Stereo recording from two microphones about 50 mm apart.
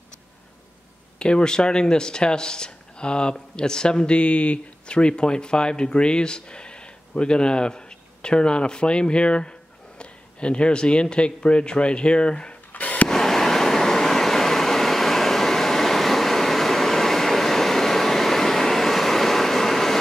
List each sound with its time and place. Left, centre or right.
1.2 s speech: centre
12.7 s a sound: left
13.1 s vehicle: centre